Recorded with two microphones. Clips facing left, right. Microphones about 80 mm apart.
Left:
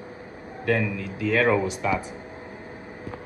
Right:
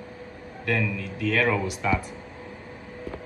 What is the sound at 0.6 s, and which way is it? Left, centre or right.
A man's voice, left.